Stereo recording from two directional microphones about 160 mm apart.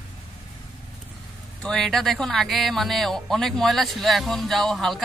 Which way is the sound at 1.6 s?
5° left (ahead or behind).